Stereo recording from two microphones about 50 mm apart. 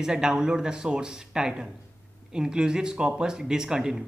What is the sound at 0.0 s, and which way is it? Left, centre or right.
Speech, centre.